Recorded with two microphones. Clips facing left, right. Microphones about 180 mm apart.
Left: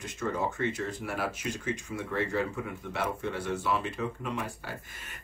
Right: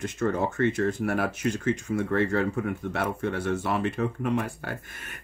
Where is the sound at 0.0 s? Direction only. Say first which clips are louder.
Right 5 dB; 55° right (ahead or behind).